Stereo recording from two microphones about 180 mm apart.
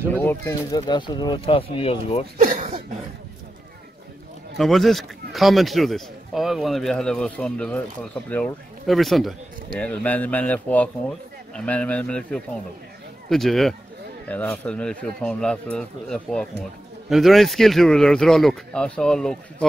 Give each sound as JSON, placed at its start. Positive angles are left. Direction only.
{"t": 0.1, "sound": "speech", "side_deg": 10}
{"t": 2.3, "sound": "speech", "side_deg": -45}
{"t": 4.6, "sound": "speech", "side_deg": 0}